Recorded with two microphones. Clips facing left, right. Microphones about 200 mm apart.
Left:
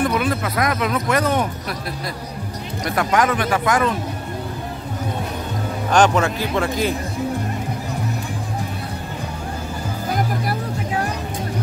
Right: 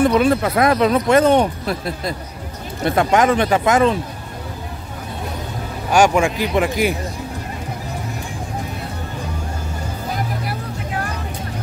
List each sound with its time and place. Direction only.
0.0 s speech: 30° right (ahead or behind)
5.9 s speech: 10° right (ahead or behind)